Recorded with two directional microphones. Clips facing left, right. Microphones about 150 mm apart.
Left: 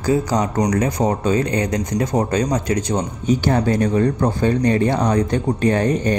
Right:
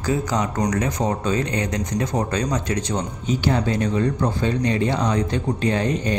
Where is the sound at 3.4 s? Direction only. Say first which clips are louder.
Left 2 dB; 50° left (ahead or behind).